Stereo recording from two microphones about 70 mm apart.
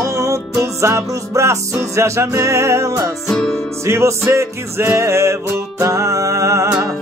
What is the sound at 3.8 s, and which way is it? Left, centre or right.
Music, right.